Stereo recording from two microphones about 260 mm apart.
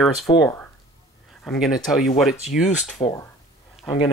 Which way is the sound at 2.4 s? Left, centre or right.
Left.